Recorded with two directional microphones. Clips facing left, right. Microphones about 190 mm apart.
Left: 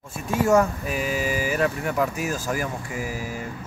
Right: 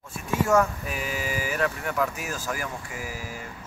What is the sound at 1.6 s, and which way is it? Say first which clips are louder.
Speech: left 1 dB; 25° left (ahead or behind).